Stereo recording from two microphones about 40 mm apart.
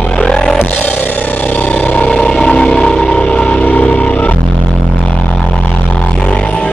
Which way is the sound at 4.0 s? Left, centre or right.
Left.